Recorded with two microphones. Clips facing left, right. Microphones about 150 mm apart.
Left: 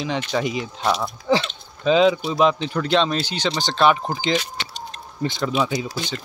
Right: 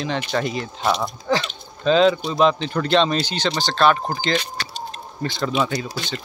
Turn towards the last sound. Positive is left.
turn(degrees=15)  # may be behind; listen again after turning